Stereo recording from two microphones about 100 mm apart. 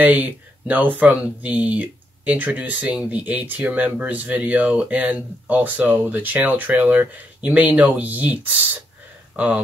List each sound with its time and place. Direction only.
0.0 s speech: 15° right (ahead or behind)